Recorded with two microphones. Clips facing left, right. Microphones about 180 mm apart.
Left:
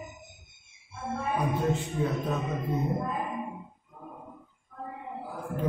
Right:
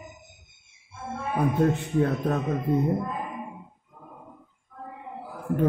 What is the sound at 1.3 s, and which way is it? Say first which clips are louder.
A man's voice: right 6 dB; 60° right (ahead or behind).